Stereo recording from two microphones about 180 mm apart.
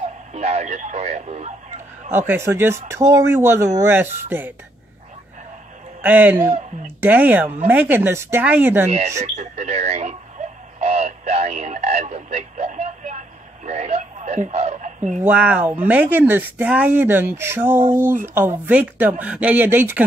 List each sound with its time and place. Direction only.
0.3 s speech: 40° right (ahead or behind)
2.0 s speech: 15° right (ahead or behind)
6.0 s speech: 10° right (ahead or behind)
8.9 s speech: 40° right (ahead or behind)
10.8 s radio: 35° right (ahead or behind)
13.7 s a sound: 40° right (ahead or behind)
15.2 s speech: 10° right (ahead or behind)